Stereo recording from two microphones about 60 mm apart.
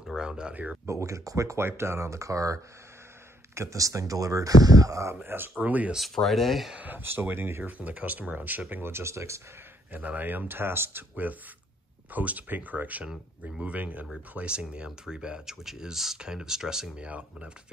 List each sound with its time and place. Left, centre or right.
0.0 s speech: centre
0.8 s speech: right
1.8 s speech: right
5.2 s speech: right
5.9 s speech: centre
6.8 s speech: right
7.7 s speech: right
9.9 s speech: right
14.3 s speech: centre